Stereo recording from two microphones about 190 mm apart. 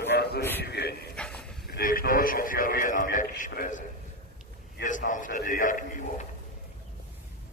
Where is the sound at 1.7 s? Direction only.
50° left (ahead or behind).